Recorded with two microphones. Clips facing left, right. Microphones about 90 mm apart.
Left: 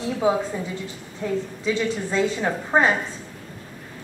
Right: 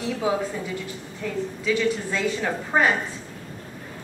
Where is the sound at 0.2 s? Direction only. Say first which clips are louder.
Left 4 dB; 25° left (ahead or behind).